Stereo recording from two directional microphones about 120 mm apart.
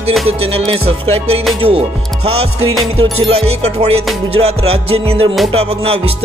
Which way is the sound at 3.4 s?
60° right (ahead or behind).